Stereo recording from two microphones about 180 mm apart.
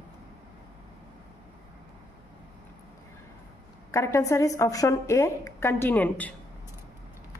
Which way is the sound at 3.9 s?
15° left (ahead or behind).